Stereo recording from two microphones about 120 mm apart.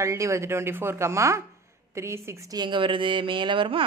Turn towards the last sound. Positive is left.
turn(degrees=-45)  # may be behind; listen again after turning